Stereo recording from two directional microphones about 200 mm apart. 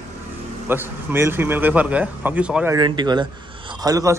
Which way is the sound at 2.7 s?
20° right (ahead or behind).